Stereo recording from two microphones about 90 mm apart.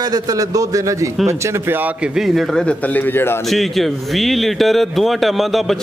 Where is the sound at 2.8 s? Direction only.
20° left (ahead or behind).